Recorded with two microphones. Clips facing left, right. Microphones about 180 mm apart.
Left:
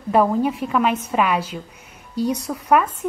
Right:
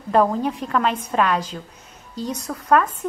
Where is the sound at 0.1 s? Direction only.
10° left (ahead or behind).